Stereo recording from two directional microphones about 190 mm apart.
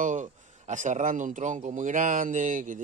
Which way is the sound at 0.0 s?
40° right (ahead or behind).